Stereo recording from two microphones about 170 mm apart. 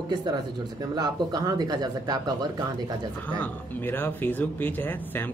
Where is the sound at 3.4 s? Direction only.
10° left (ahead or behind).